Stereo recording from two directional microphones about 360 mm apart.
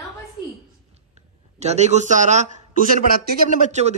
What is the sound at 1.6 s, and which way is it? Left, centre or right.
A man's voice, centre.